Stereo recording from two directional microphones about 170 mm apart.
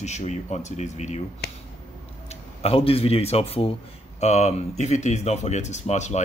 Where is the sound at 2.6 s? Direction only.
35° left (ahead or behind).